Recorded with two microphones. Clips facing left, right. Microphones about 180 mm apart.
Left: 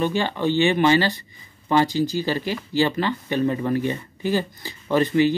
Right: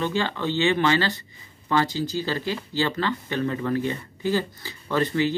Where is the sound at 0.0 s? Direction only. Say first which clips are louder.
Left 3 dB; 15° left (ahead or behind).